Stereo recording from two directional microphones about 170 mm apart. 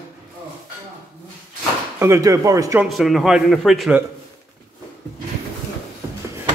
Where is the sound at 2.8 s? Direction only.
Centre (ahead or behind).